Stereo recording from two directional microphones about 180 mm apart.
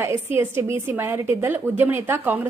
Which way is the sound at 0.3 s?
10° right (ahead or behind).